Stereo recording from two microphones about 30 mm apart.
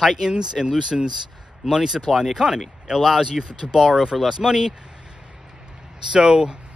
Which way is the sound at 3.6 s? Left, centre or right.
Right.